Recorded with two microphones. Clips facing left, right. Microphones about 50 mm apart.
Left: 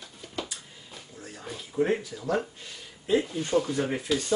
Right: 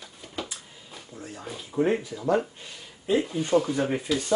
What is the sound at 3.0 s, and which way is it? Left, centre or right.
Speech, centre.